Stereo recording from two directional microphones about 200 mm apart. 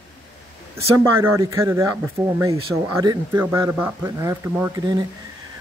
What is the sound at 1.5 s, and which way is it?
Speech, 15° right (ahead or behind).